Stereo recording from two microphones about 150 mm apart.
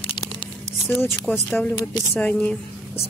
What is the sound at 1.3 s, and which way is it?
Speech, 10° left (ahead or behind).